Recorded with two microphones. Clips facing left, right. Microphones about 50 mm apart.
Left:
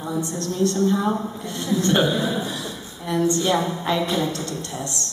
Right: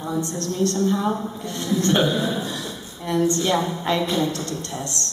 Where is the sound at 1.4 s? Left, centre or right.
Centre.